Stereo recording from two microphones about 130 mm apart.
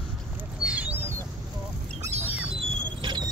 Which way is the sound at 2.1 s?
55° right (ahead or behind).